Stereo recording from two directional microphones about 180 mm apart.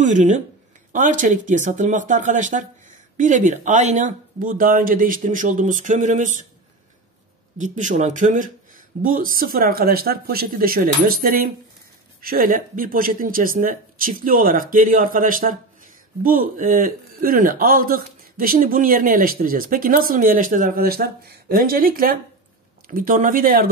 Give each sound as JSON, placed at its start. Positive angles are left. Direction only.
{"t": 0.0, "sound": "a man's voice", "side_deg": -40}
{"t": 7.5, "sound": "a man's voice", "side_deg": -45}